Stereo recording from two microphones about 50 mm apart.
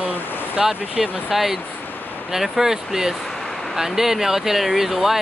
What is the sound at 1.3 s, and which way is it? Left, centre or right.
Speech, centre.